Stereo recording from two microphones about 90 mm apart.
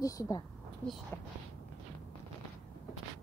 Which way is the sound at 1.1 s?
25° left (ahead or behind).